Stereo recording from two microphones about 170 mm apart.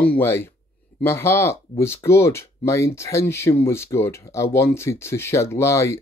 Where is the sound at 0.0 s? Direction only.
10° left (ahead or behind).